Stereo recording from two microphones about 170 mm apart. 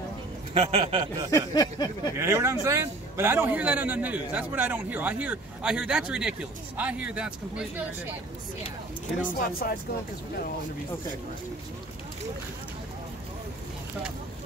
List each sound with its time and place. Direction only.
0.6 s speech: 35° right (ahead or behind)
1.3 s a sound: 25° left (ahead or behind)
2.1 s a man's voice: 15° right (ahead or behind)
9.5 s speech: 60° left (ahead or behind)